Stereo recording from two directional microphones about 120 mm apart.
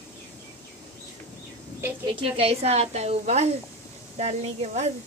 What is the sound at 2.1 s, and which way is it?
A woman's voice, 50° right (ahead or behind).